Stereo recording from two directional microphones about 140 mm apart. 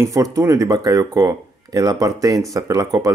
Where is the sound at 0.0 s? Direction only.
25° right (ahead or behind).